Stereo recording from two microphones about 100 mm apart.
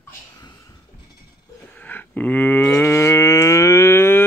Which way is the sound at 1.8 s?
15° left (ahead or behind).